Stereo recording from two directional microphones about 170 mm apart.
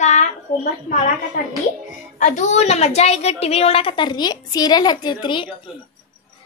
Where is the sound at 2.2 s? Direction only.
45° left (ahead or behind); by 5.5 s 30° left (ahead or behind).